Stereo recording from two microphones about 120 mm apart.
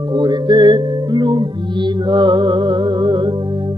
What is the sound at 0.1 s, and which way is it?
Music, 35° right (ahead or behind).